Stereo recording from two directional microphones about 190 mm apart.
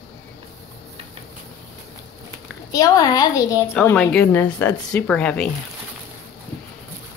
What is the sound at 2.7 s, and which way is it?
A woman's voice, 20° left (ahead or behind).